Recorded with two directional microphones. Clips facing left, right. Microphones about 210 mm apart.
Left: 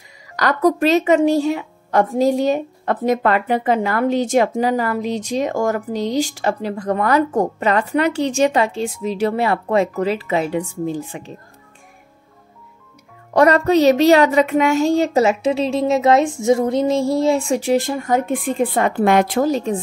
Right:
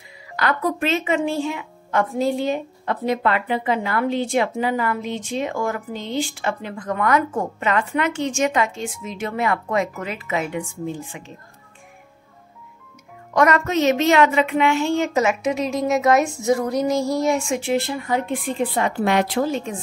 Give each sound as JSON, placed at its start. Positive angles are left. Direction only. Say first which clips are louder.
{"t": 0.4, "sound": "a woman's voice", "louder": "left 6 dB", "side_deg": 40}
{"t": 13.3, "sound": "a woman's voice", "louder": "left 5 dB", "side_deg": 35}